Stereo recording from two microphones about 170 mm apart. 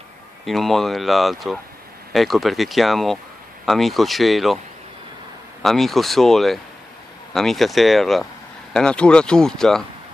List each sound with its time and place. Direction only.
0.5 s speech: centre (ahead or behind)
5.6 s speech: centre (ahead or behind)